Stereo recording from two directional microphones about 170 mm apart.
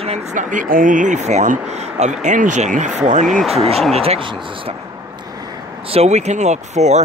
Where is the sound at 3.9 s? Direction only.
35° right (ahead or behind).